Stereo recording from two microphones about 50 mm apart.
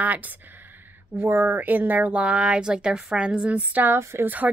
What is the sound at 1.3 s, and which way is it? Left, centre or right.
Speech, right.